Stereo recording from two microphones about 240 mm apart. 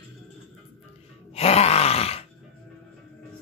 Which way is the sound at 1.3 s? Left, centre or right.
Left.